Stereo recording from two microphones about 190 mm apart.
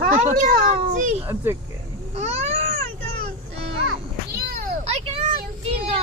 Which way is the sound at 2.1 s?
35° right (ahead or behind).